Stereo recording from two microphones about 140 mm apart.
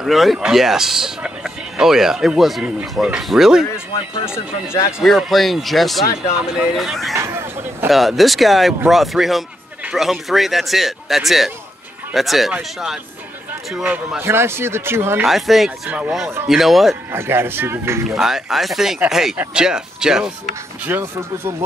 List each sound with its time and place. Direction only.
0.0 s speech: centre (ahead or behind)
3.9 s speech: 40° left (ahead or behind)
5.0 s speech: centre (ahead or behind)
7.2 s speech: 20° right (ahead or behind)
7.9 s speech: centre (ahead or behind)
13.7 s speech: 5° right (ahead or behind)
15.2 s speech: centre (ahead or behind)
17.1 s speech: 15° right (ahead or behind)
18.0 s speech: 5° right (ahead or behind)
20.8 s speech: 15° right (ahead or behind)